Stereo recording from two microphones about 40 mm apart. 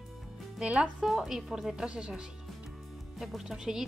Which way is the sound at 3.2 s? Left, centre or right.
Centre.